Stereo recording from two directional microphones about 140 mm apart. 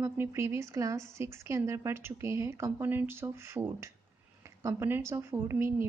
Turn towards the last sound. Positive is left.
turn(degrees=-15)  # may be behind; listen again after turning